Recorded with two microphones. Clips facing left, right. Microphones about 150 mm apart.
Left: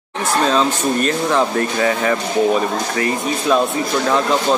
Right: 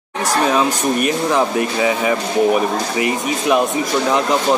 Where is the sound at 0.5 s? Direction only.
15° right (ahead or behind).